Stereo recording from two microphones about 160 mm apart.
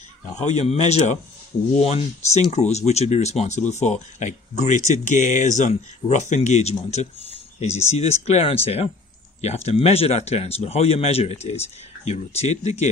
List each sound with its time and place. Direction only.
0.3 s speech: 45° left (ahead or behind)